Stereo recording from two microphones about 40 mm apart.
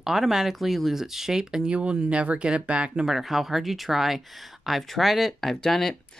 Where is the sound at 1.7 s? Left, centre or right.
Right.